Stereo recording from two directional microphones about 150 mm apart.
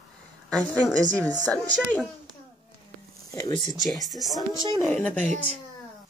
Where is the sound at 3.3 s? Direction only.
25° left (ahead or behind).